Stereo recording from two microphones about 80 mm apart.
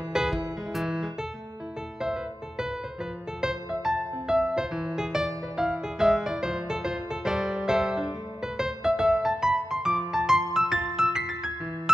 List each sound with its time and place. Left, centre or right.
0.1 s music: centre
3.3 s music: centre